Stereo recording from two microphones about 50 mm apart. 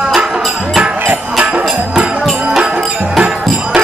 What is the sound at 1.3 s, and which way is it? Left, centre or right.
Music, right.